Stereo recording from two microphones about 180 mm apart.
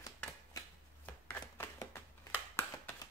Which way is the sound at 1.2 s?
15° left (ahead or behind).